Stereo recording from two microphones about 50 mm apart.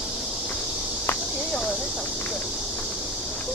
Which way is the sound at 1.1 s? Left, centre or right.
Left.